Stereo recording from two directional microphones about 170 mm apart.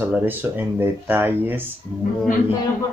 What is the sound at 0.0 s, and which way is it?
Speech, 10° right (ahead or behind).